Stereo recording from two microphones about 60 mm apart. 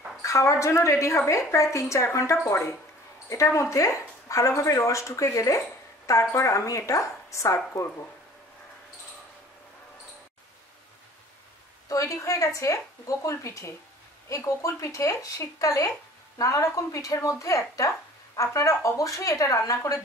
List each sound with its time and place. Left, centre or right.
0.2 s speech: left
3.4 s speech: left
11.9 s speech: left